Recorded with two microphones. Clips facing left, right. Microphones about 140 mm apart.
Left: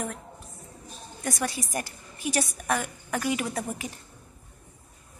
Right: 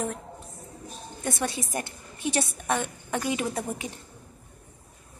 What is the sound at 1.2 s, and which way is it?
A woman's voice, 25° right (ahead or behind).